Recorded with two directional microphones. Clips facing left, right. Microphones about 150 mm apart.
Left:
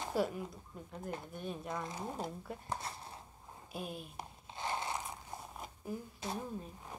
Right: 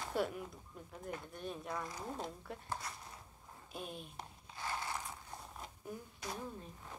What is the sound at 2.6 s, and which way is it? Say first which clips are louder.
Speech: left 2 dB; 25° left (ahead or behind).